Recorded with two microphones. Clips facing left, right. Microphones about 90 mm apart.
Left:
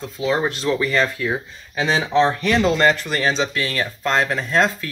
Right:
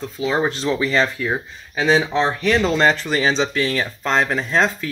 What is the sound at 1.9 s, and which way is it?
Speech, 15° right (ahead or behind).